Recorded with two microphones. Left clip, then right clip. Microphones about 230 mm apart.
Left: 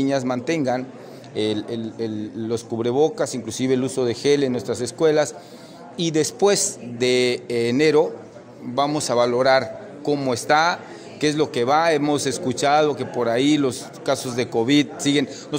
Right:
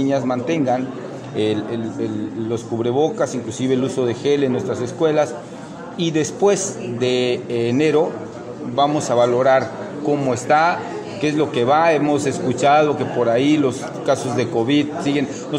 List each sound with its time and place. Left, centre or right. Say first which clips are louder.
0.0 s a man's voice: right 3 dB; left